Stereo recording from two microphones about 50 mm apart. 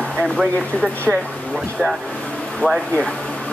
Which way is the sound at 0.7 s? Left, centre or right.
Centre.